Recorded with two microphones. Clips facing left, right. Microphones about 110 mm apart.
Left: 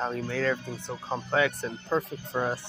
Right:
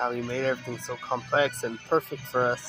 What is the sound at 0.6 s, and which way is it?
Speech, 75° right (ahead or behind).